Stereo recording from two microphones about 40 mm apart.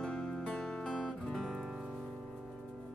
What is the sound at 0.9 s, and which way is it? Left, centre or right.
Music, centre.